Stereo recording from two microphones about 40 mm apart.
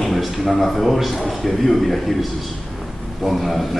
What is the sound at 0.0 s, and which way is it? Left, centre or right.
A man's voice, centre.